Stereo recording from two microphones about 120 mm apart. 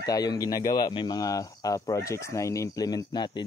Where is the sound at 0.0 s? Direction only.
35° left (ahead or behind).